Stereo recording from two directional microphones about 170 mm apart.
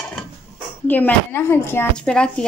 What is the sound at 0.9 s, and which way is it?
Speech, 10° left (ahead or behind).